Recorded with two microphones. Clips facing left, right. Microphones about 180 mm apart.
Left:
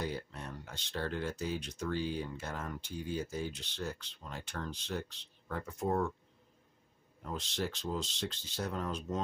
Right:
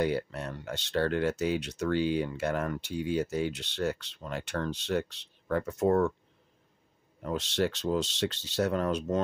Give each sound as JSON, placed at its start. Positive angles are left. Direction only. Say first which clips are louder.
{"t": 0.0, "sound": "speech", "louder": "right 10 dB", "side_deg": -75}
{"t": 7.2, "sound": "speech", "louder": "right 8 dB", "side_deg": -75}